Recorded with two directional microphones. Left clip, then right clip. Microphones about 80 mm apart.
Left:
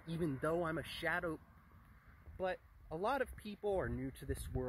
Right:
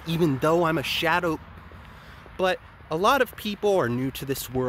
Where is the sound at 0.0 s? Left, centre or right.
Right.